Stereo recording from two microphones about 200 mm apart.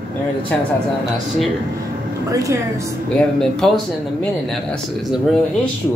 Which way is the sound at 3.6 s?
Centre (ahead or behind).